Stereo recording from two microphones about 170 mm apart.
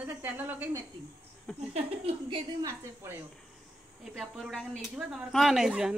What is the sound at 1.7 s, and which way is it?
Speech, 35° right (ahead or behind).